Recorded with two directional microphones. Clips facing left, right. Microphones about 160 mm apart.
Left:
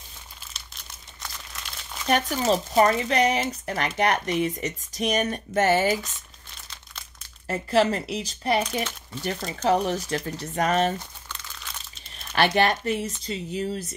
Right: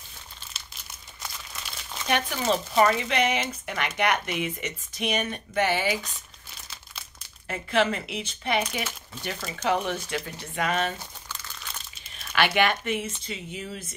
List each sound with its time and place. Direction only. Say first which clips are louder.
1.2 s crumpling: even; centre (ahead or behind)
2.5 s speech: left 1 dB; 40° left (ahead or behind)
7.4 s speech: left 3 dB; 35° left (ahead or behind)
11.0 s crumpling: left 1 dB; 5° right (ahead or behind)
12.3 s speech: left 2 dB; 35° left (ahead or behind)